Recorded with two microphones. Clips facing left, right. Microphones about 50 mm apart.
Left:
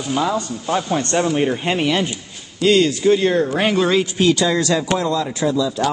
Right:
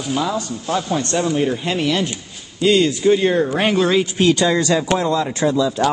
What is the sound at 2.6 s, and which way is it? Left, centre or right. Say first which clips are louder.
Speech: even; centre.